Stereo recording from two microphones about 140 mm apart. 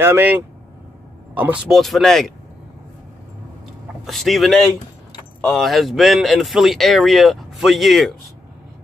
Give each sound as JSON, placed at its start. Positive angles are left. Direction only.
{"t": 0.0, "sound": "speech", "side_deg": -15}
{"t": 1.7, "sound": "speech", "side_deg": 0}
{"t": 4.0, "sound": "speech", "side_deg": 0}